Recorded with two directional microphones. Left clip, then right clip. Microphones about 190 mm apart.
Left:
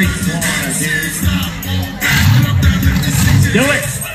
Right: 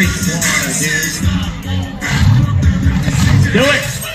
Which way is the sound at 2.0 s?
30° left (ahead or behind).